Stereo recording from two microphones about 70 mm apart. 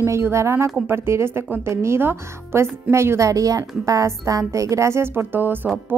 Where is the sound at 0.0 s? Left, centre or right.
Right.